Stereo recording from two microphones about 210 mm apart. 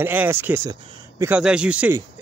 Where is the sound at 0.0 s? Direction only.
10° right (ahead or behind).